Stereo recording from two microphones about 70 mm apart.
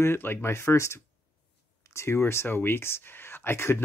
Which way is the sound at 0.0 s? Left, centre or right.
Left.